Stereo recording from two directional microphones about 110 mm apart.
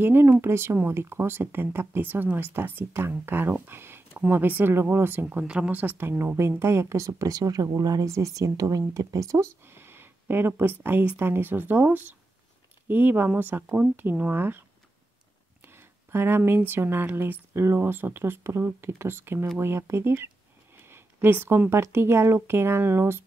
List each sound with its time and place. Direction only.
0.0 s speech: 20° right (ahead or behind)
5.4 s speech: 10° right (ahead or behind)
15.7 s speech: 20° right (ahead or behind)